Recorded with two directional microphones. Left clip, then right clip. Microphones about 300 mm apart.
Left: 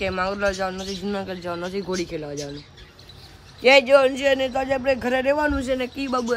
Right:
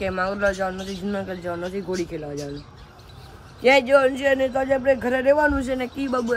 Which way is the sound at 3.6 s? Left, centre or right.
Centre.